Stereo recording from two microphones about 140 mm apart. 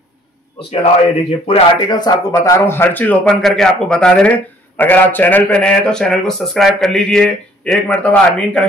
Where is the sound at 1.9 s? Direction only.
25° left (ahead or behind).